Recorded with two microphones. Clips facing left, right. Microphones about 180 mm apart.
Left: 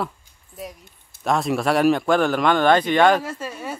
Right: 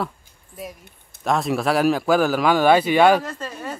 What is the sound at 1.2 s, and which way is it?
Speech, centre (ahead or behind).